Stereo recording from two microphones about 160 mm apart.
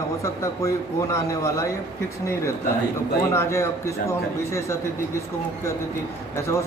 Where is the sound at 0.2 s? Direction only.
20° left (ahead or behind).